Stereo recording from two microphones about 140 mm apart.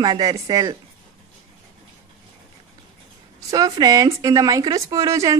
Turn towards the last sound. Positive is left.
turn(degrees=-20)  # may be behind; listen again after turning